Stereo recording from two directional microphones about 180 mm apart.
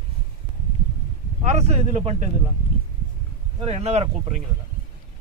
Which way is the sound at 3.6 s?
35° right (ahead or behind).